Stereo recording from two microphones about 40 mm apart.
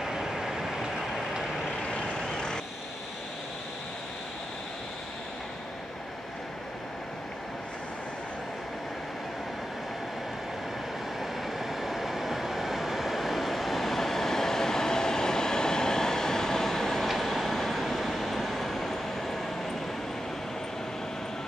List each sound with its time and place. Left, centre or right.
0.0 s train: centre
2.1 s vehicle: centre
11.1 s train: centre